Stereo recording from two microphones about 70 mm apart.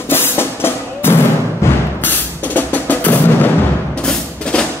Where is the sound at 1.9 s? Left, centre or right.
Left.